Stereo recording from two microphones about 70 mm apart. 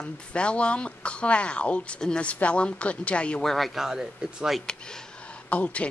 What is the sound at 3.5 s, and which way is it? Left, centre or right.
Speech, centre.